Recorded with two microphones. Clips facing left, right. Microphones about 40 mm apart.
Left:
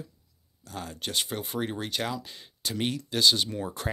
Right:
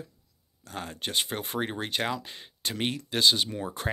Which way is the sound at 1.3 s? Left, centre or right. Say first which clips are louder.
Even; right.